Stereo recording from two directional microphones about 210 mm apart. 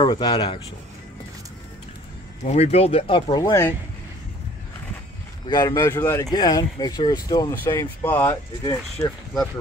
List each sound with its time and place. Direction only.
0.0 s speech: 20° left (ahead or behind)
2.4 s speech: 30° left (ahead or behind)
5.5 s speech: 20° left (ahead or behind)